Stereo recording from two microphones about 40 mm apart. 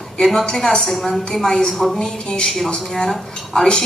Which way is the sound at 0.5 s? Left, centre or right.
Centre.